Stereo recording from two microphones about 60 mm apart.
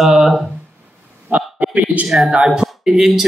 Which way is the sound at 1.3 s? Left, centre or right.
Right.